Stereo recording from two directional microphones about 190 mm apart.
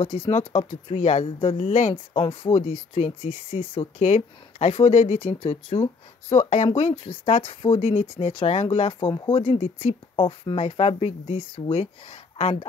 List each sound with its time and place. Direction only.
0.0 s speech: 35° left (ahead or behind)
9.0 s speech: 20° left (ahead or behind)
9.4 s speech: 35° left (ahead or behind)